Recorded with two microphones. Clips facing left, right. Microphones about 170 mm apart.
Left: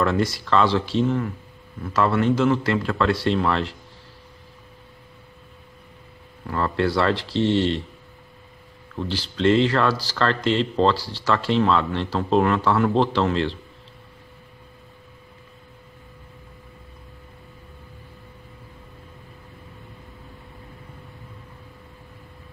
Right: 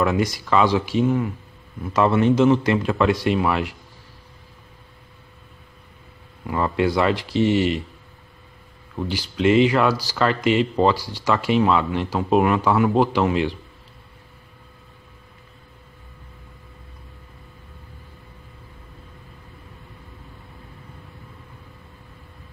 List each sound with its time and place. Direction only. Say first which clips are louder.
0.0 s speech: right 1 dB; 15° right (ahead or behind)
6.4 s speech: right 2 dB; 15° right (ahead or behind)
8.9 s speech: right 2 dB; 15° right (ahead or behind)